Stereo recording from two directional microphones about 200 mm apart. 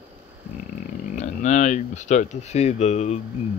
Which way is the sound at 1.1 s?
35° left (ahead or behind).